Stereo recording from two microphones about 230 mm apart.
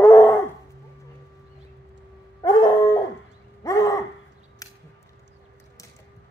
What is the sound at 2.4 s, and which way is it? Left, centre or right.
Dog, centre.